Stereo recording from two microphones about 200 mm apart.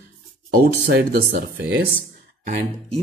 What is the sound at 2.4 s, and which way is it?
Speech, 35° right (ahead or behind).